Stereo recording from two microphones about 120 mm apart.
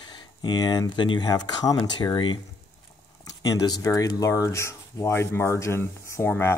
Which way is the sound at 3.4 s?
30° left (ahead or behind).